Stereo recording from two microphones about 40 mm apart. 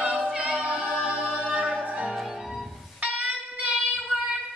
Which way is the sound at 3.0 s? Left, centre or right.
Right.